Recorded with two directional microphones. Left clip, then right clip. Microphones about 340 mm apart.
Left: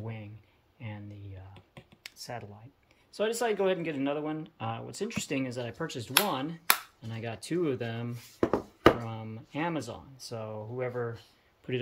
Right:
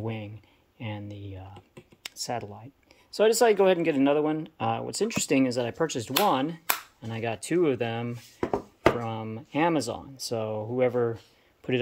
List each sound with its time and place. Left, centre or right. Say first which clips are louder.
0.0 s speech: right 9 dB; centre
11.6 s speech: right 6 dB; centre